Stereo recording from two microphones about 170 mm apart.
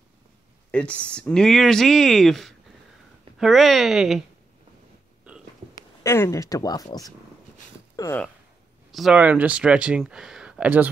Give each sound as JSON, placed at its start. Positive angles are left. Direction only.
{"t": 0.7, "sound": "speech", "side_deg": 5}
{"t": 5.8, "sound": "speech", "side_deg": 15}
{"t": 7.9, "sound": "a sound", "side_deg": 20}
{"t": 8.9, "sound": "speech", "side_deg": -5}